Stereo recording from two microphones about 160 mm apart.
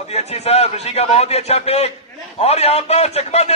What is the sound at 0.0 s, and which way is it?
A man's voice, 40° left (ahead or behind).